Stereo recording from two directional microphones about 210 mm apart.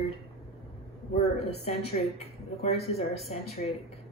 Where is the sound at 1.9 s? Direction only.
30° left (ahead or behind).